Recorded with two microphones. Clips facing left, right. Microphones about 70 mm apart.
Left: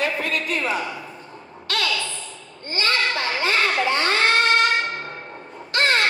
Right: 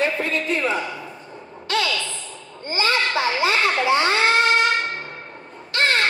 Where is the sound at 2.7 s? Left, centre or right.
Centre.